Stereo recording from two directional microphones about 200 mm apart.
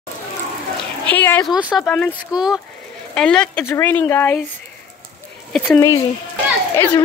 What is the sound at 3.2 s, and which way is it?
Speech, 5° left (ahead or behind).